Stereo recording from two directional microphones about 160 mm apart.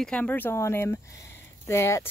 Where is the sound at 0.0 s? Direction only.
10° left (ahead or behind).